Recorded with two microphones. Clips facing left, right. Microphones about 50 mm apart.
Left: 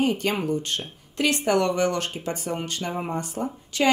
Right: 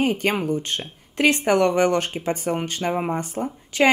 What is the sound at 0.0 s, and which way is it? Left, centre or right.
Speech, right.